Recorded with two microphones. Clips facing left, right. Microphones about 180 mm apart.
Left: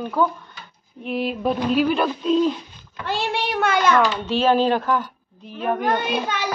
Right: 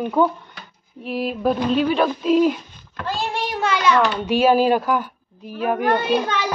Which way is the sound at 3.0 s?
70° left (ahead or behind).